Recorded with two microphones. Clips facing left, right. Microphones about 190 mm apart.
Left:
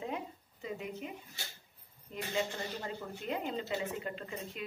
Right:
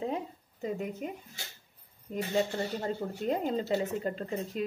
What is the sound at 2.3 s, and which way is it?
Speech, 40° right (ahead or behind).